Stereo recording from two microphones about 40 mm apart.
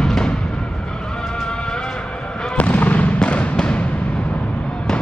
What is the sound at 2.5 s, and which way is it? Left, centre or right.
Fireworks, left.